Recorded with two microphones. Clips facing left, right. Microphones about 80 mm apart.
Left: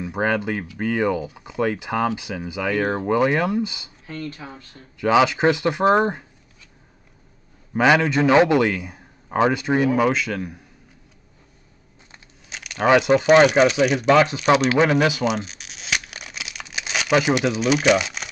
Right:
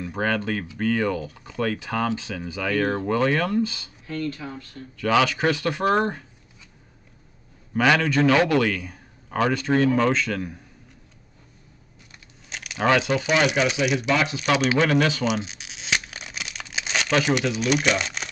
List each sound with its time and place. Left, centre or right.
0.0 s speech: centre
7.7 s speech: centre
12.4 s keys jangling: centre
12.8 s speech: centre
13.2 s speech: left
14.8 s speech: centre
15.2 s crumpling: centre
16.7 s speech: centre